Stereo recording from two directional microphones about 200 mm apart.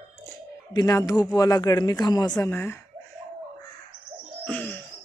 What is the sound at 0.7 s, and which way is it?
A man's voice, 15° left (ahead or behind).